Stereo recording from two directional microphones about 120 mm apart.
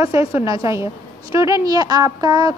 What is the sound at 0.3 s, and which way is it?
A woman's voice, 25° right (ahead or behind).